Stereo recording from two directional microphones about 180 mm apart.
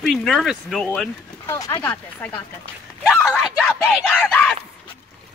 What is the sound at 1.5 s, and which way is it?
Speech, 15° left (ahead or behind).